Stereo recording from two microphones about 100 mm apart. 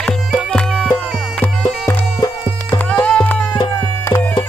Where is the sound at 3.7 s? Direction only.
30° left (ahead or behind).